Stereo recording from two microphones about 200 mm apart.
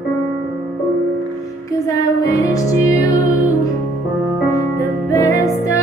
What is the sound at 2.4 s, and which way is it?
Music, 15° left (ahead or behind).